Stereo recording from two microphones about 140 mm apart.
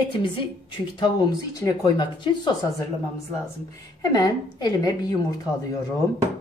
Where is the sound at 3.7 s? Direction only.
25° left (ahead or behind).